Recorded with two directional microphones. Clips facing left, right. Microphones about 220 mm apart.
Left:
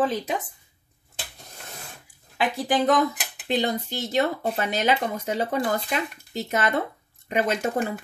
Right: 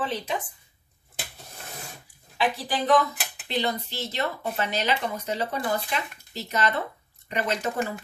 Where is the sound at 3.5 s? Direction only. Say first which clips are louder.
Left 4 dB; 50° left (ahead or behind).